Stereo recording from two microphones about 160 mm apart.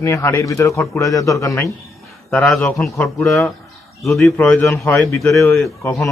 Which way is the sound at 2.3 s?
Centre (ahead or behind).